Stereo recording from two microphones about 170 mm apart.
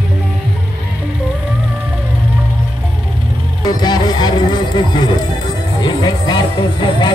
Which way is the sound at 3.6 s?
25° left (ahead or behind).